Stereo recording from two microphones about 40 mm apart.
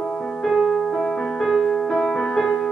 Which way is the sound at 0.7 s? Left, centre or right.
Centre.